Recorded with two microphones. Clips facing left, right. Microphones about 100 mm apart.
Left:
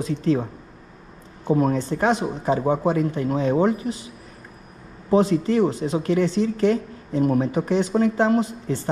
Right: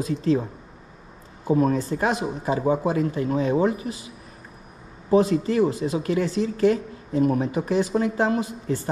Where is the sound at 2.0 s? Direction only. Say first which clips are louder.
Left 3 dB; 30° left (ahead or behind).